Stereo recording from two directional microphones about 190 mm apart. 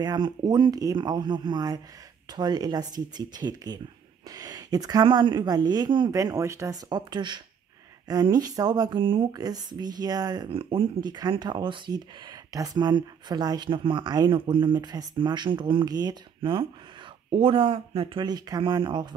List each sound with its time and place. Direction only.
0.0 s speech: 20° right (ahead or behind)